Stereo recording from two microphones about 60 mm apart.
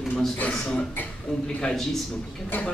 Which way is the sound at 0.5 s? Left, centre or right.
Centre.